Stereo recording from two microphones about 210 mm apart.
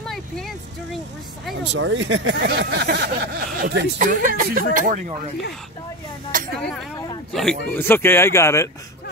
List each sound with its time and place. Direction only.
0.0 s speech: centre (ahead or behind)
1.6 s speech: 60° right (ahead or behind); by 5.3 s 35° right (ahead or behind)
7.3 s speech: 5° left (ahead or behind)